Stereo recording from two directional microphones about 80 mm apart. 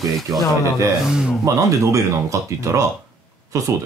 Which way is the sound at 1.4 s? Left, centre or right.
Right.